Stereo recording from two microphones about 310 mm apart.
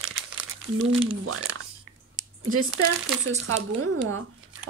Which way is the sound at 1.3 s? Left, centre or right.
Right.